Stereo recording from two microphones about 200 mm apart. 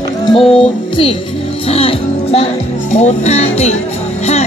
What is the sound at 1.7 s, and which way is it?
Speech, 30° left (ahead or behind).